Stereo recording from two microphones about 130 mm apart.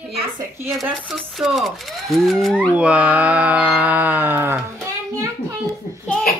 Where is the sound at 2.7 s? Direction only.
10° right (ahead or behind).